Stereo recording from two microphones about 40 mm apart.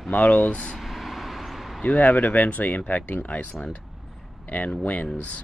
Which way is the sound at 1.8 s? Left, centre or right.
Left.